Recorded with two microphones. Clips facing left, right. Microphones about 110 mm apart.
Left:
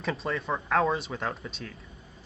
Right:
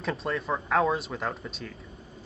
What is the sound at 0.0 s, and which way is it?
Speech, centre (ahead or behind).